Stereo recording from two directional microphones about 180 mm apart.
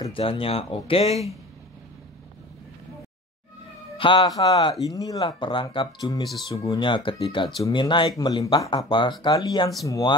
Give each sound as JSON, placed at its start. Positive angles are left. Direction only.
{"t": 0.0, "sound": "speech", "side_deg": 30}
{"t": 4.0, "sound": "a man's voice", "side_deg": 30}